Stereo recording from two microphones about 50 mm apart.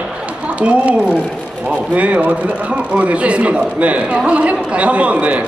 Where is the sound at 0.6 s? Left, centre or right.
Right.